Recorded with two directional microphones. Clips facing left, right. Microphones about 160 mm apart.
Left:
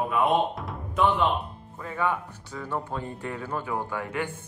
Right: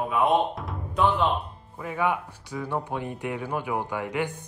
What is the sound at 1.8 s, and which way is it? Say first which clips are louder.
Speech: right 2 dB; 15° right (ahead or behind).